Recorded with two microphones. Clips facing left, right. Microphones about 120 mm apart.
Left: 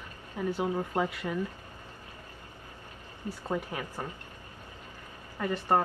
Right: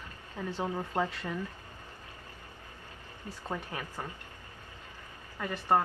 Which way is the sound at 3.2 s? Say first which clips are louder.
Left 5 dB; 10° left (ahead or behind).